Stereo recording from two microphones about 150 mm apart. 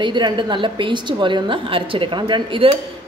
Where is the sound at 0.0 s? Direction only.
30° right (ahead or behind).